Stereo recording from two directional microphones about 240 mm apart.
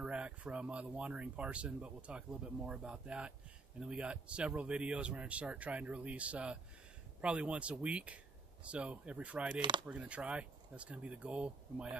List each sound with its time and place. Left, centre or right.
0.0 s speech: centre
9.6 s speech: centre
9.8 s speech: centre